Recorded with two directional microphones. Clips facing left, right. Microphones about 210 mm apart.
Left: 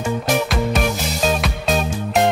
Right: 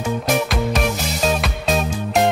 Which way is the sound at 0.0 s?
Centre (ahead or behind).